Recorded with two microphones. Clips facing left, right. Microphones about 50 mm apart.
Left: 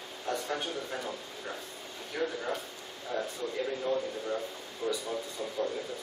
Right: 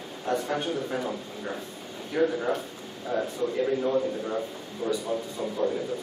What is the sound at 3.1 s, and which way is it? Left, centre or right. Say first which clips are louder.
A man's voice: right 6 dB; right.